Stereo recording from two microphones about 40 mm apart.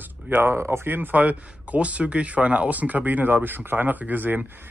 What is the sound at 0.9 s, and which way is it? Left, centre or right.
Speech, right.